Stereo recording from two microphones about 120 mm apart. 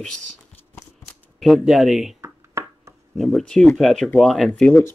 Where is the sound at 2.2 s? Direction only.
25° right (ahead or behind).